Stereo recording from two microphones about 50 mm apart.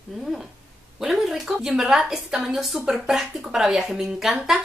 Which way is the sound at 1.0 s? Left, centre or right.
Centre.